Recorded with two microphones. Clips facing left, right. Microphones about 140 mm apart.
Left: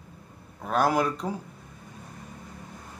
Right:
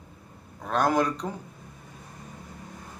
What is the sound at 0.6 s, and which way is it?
Speech, 5° left (ahead or behind).